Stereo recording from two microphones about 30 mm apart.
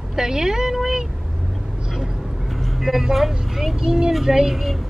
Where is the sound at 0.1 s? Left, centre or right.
Centre.